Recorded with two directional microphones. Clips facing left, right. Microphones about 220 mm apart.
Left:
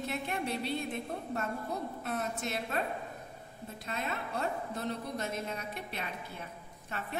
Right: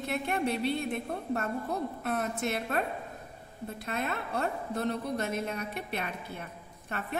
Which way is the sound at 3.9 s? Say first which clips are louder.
Right 4 dB; 60° right (ahead or behind).